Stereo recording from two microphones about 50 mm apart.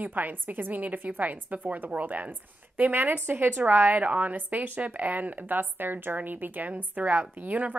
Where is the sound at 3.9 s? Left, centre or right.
Right.